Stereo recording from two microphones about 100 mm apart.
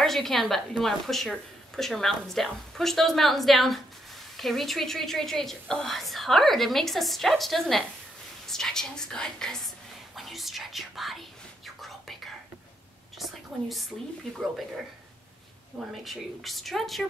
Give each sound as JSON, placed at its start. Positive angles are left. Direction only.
{"t": 0.0, "sound": "a woman's voice", "side_deg": 0}
{"t": 13.2, "sound": "a woman's voice", "side_deg": 0}
{"t": 15.9, "sound": "a woman's voice", "side_deg": 0}